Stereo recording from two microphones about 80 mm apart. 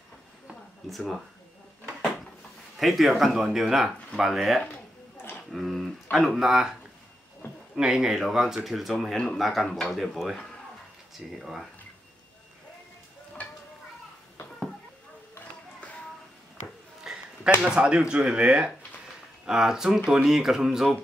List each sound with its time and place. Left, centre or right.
0.8 s speech: centre
2.8 s speech: centre
5.1 s a sound: left
5.5 s speech: centre
7.7 s speech: centre
9.1 s speech: centre
9.4 s speech: centre
11.1 s speech: centre
17.0 s a sound: centre
17.6 s speech: centre